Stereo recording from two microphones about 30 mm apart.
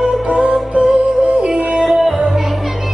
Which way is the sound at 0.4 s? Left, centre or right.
Right.